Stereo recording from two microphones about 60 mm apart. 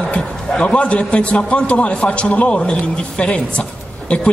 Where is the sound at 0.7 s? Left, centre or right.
Centre.